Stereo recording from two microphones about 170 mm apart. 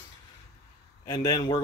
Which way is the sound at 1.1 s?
25° left (ahead or behind).